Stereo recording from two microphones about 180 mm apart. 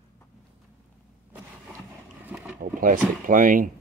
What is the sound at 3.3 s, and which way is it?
Speech, 50° right (ahead or behind).